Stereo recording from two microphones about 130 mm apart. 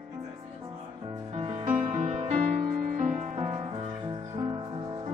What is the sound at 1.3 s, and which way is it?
Music, 45° right (ahead or behind).